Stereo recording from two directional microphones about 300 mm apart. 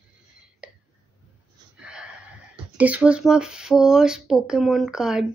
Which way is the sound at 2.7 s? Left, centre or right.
Centre.